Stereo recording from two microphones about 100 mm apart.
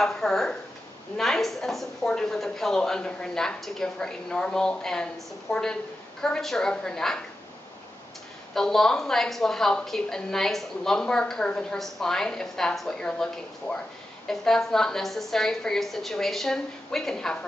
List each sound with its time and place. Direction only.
0.0 s a woman's voice: 5° left (ahead or behind)
8.5 s a woman's voice: 5° left (ahead or behind)